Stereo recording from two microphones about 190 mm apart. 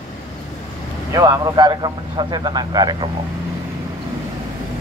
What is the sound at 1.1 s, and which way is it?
A man's voice, 15° right (ahead or behind).